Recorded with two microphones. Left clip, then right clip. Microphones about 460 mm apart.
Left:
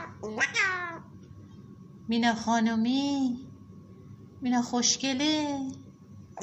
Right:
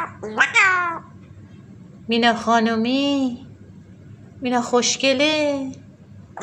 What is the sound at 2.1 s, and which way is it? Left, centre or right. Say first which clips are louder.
A woman's voice: right 10 dB; right.